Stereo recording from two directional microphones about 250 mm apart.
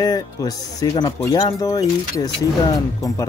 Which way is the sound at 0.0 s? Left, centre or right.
Centre.